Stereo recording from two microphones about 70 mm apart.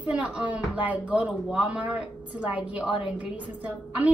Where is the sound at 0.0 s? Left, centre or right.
Centre.